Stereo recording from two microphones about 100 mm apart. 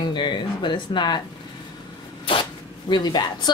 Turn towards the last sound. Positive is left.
turn(degrees=45)  # may be behind; listen again after turning